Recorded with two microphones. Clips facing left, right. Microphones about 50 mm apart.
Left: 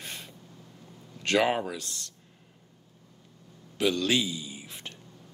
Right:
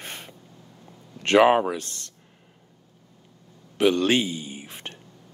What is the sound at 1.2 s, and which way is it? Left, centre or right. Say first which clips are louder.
Speech: right 8 dB; right.